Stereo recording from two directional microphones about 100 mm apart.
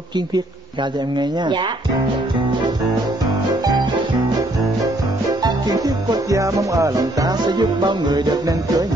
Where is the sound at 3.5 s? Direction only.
45° right (ahead or behind).